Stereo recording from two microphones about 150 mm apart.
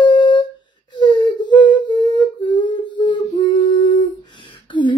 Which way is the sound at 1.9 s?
30° left (ahead or behind).